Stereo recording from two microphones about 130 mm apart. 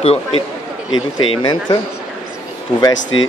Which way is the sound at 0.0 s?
50° left (ahead or behind).